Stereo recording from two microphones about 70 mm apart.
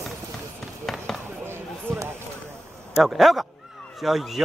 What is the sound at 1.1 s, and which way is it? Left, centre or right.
Basketball bounce, centre.